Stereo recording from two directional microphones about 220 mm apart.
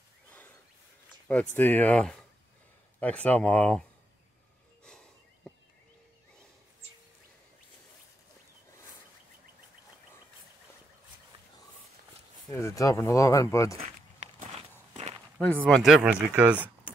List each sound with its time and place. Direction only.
1.2 s speech: 5° left (ahead or behind)
4.8 s a sound: 5° left (ahead or behind)
12.4 s speech: 15° left (ahead or behind)
13.7 s walk: 30° right (ahead or behind)
15.3 s speech: 5° left (ahead or behind)